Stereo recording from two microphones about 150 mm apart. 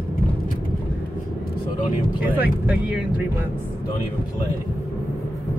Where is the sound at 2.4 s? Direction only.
10° right (ahead or behind).